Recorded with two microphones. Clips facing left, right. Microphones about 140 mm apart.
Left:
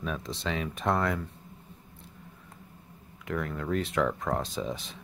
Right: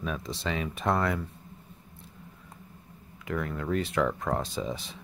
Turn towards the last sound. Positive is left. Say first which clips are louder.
# even
turn(degrees=0)  # may be behind; listen again after turning